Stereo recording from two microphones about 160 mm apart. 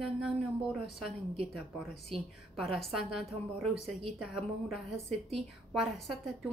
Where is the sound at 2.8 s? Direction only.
Centre (ahead or behind).